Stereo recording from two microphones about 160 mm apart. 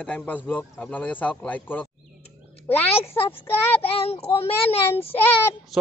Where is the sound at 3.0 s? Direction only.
35° left (ahead or behind).